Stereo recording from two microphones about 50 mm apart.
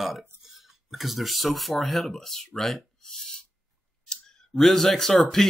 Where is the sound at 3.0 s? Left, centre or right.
Centre.